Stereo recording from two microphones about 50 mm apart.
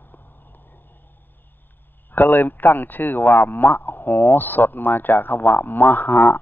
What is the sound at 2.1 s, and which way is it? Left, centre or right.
Speech, left.